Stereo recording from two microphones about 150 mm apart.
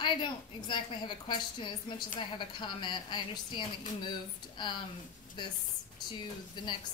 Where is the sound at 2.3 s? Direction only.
30° left (ahead or behind).